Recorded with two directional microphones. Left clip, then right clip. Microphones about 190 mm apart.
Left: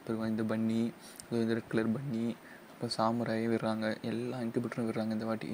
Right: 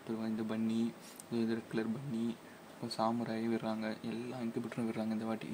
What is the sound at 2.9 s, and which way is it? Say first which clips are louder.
Speech: left 4 dB; 15° left (ahead or behind).